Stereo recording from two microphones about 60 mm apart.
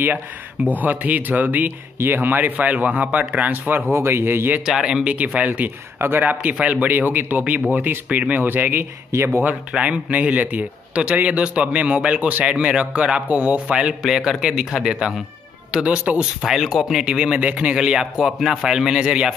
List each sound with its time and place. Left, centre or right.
0.7 s a man's voice: right
3.9 s speech: right
4.6 s a man's voice: centre
5.0 s a man's voice: right
5.9 s a man's voice: right
8.5 s speech: right
9.1 s speech: right
9.8 s a man's voice: right
16.4 s a man's voice: centre